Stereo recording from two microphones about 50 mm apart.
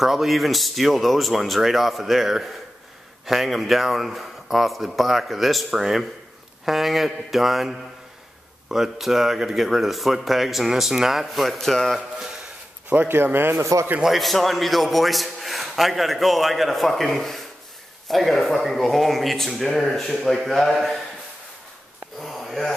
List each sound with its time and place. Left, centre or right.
0.0 s speech: centre
13.1 s speech: right
13.6 s a man's voice: right
14.0 s speech: centre
22.2 s a sound: centre